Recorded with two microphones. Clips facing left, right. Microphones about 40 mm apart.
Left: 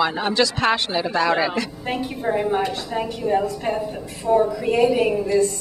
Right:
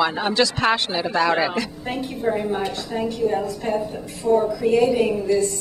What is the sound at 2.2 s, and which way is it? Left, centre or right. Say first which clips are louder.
A woman's voice: left 1 dB; centre.